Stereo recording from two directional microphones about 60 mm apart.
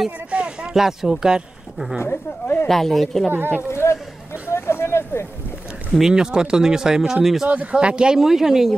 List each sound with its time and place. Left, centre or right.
0.3 s a sound: centre
0.7 s speech: centre
2.0 s speech: left
2.7 s a woman's voice: centre
3.3 s speech: right
3.7 s a sound: left
5.9 s speech: centre
7.4 s speech: right; by 8.7 s centre